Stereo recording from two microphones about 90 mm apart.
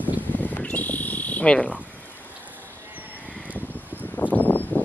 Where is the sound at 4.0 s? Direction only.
20° left (ahead or behind).